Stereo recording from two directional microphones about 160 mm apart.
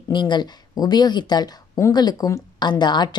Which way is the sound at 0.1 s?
30° left (ahead or behind).